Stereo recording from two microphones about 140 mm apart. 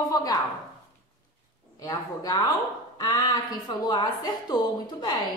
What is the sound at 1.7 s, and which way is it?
A woman's voice, 25° left (ahead or behind).